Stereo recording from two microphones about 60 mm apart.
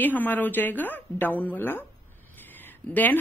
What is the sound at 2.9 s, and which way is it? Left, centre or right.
Speech, left.